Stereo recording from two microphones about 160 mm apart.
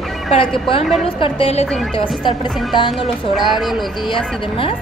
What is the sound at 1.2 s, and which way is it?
Speech, 35° left (ahead or behind).